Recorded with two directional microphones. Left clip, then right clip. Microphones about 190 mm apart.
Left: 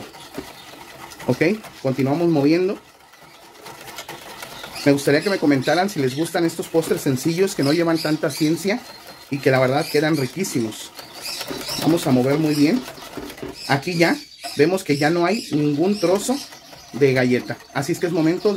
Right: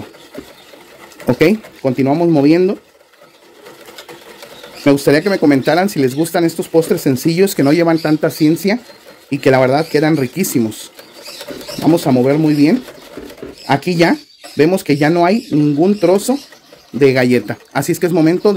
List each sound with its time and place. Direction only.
1.2 s speech: 45° right (ahead or behind)
4.8 s speech: 50° right (ahead or behind)
12.0 s speech: 50° right (ahead or behind)